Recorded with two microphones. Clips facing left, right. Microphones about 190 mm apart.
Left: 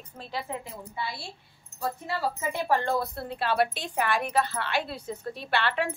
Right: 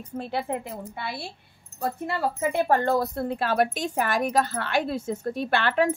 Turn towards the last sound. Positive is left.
turn(degrees=-45)  # may be behind; listen again after turning